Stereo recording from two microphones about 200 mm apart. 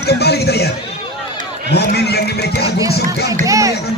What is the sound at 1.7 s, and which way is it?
Speech, 55° left (ahead or behind).